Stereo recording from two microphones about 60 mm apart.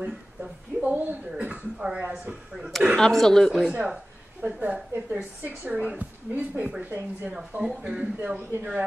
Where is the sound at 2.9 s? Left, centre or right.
Centre.